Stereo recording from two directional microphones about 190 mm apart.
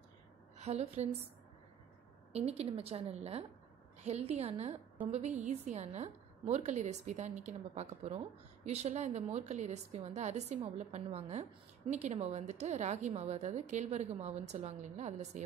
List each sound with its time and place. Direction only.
0.6 s a woman's voice: 35° right (ahead or behind)
2.3 s a woman's voice: 30° right (ahead or behind)